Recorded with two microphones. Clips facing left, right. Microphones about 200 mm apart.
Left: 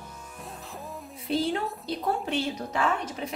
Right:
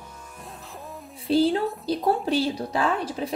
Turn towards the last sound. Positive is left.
turn(degrees=-35)  # may be behind; listen again after turning